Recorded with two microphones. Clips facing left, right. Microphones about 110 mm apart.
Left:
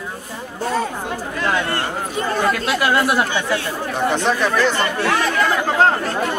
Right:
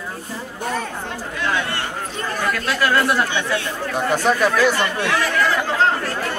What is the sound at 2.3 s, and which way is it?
Speech, 20° left (ahead or behind).